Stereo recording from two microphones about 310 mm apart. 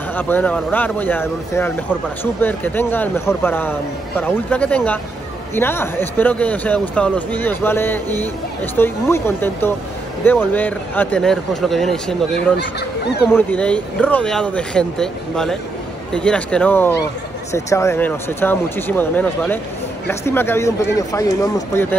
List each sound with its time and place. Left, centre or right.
0.1 s speech: centre
12.5 s speech: left
13.3 s speech: centre